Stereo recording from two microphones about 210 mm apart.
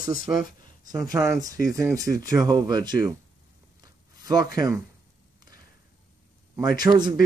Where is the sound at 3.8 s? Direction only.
20° right (ahead or behind).